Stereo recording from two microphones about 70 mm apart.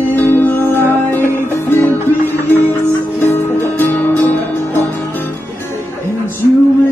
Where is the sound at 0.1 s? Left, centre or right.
Left.